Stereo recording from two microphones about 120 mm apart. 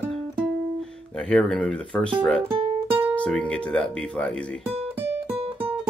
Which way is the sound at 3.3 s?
5° left (ahead or behind).